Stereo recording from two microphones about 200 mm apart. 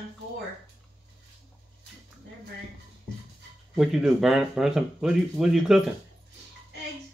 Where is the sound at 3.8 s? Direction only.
Centre (ahead or behind).